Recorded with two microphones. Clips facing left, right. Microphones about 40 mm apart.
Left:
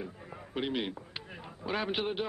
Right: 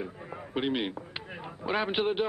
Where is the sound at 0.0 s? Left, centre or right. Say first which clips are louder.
Right 4 dB; centre.